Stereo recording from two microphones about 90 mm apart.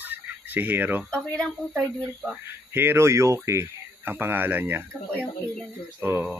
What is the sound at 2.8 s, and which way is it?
Speech, 30° right (ahead or behind).